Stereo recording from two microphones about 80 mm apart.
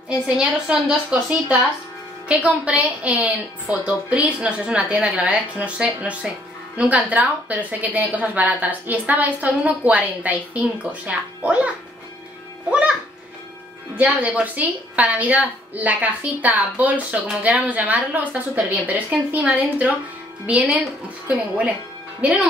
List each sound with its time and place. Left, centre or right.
0.4 s a woman's voice: centre
2.2 s a woman's voice: centre
14.2 s a woman's voice: centre